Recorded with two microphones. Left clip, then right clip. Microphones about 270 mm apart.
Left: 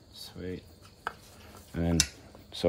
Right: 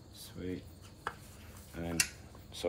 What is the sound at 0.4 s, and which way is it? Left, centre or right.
Speech, left.